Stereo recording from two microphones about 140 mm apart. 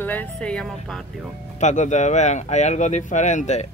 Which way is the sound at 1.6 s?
60° left (ahead or behind).